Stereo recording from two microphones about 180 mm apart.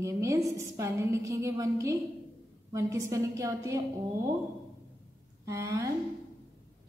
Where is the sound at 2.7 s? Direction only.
15° right (ahead or behind).